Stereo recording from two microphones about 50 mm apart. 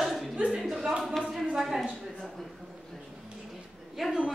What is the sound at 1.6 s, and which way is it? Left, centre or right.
Speech, centre.